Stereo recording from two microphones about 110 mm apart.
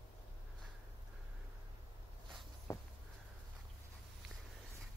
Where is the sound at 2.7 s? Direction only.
25° left (ahead or behind).